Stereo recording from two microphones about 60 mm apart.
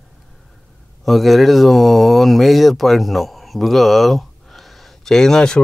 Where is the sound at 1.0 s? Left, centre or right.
Centre.